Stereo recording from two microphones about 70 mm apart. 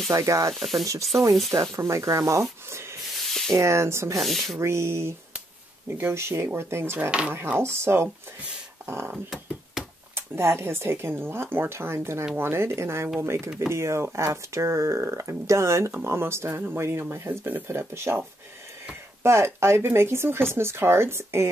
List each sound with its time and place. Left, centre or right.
0.1 s speech: right
0.5 s speech: centre
1.5 s speech: right
2.7 s rub: right
3.3 s a sound: centre
3.5 s speech: right
4.2 s speech: centre
4.6 s speech: right
7.1 s speech: centre
7.4 s speech: right
9.1 s a sound: centre
10.1 s speech: right
19.2 s speech: right